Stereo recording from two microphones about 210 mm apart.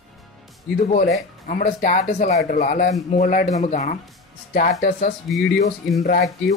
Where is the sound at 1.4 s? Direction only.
40° left (ahead or behind).